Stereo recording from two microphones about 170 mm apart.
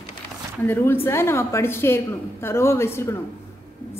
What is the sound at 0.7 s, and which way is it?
A woman's voice, 15° left (ahead or behind).